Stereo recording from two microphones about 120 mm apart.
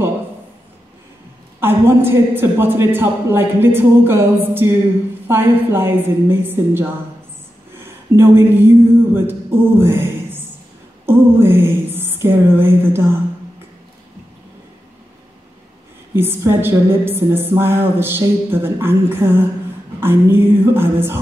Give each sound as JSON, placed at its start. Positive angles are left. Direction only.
{"t": 1.6, "sound": "a woman's voice", "side_deg": -20}
{"t": 7.8, "sound": "a sound", "side_deg": -20}
{"t": 16.2, "sound": "a woman's voice", "side_deg": -20}